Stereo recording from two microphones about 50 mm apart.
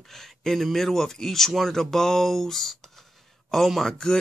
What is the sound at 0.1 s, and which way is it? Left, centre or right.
Speech, centre.